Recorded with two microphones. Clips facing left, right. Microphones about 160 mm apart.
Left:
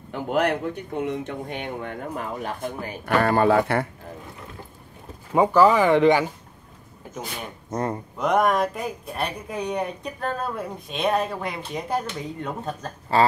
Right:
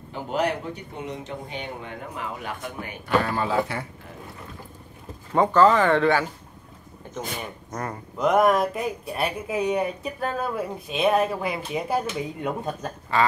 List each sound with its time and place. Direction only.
0.1 s speech: 55° left (ahead or behind); by 3.0 s 35° left (ahead or behind)
3.2 s speech: 55° left (ahead or behind)
5.3 s speech: 10° left (ahead or behind)
7.7 s speech: 25° left (ahead or behind)
8.2 s speech: centre (ahead or behind)
13.1 s speech: 35° left (ahead or behind)